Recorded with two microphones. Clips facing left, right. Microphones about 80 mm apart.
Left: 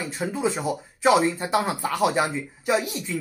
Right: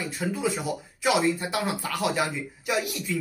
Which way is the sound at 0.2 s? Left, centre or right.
Left.